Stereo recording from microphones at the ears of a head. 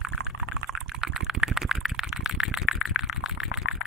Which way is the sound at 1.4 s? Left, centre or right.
Centre.